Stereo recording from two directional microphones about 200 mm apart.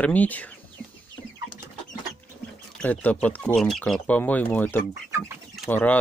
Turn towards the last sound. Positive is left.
turn(degrees=10)  # may be behind; listen again after turning